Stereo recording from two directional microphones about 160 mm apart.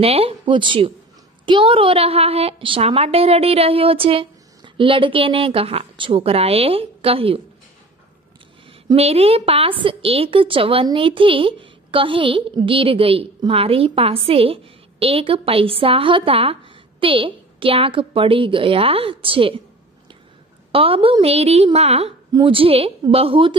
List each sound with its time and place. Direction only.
0.0 s a woman's voice: 35° right (ahead or behind)
8.9 s a woman's voice: 40° right (ahead or behind)
20.7 s a woman's voice: 35° right (ahead or behind)